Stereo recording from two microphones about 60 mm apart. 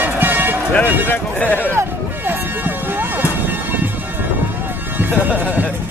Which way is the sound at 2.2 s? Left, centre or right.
Right.